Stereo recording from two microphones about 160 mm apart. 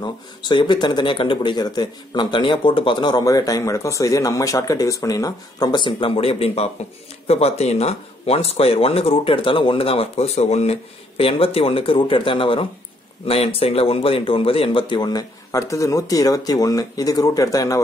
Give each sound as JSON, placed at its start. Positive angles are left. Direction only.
{"t": 0.0, "sound": "speech", "side_deg": 30}